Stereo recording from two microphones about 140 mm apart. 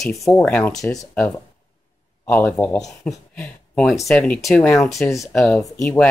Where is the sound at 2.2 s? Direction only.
10° left (ahead or behind).